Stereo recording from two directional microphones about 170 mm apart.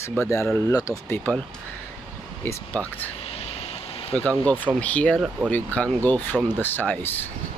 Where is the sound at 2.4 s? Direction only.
10° left (ahead or behind).